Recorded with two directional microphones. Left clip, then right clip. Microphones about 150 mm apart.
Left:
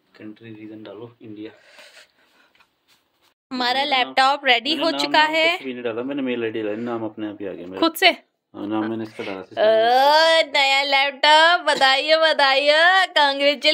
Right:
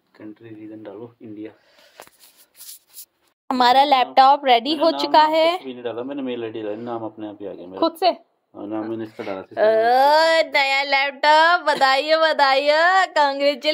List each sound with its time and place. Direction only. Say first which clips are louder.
0.2 s a man's voice: right 1 dB; 35° right (ahead or behind)
1.2 s a woman's voice: right 1 dB; 45° right (ahead or behind)
3.5 s a woman's voice: right 5 dB; 50° right (ahead or behind)
4.1 s a woman's voice: right 1 dB; 25° right (ahead or behind)
5.7 s speech: left 2 dB; 40° left (ahead or behind)
7.8 s speech: left 2 dB; 5° left (ahead or behind)
9.1 s speech: even; 10° right (ahead or behind)